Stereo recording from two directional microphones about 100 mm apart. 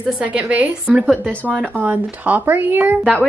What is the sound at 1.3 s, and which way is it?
Speech, 15° left (ahead or behind).